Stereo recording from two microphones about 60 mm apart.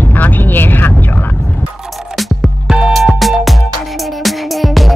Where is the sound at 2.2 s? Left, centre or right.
Centre.